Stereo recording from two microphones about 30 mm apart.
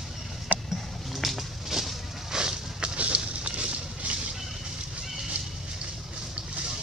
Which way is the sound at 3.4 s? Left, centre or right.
Right.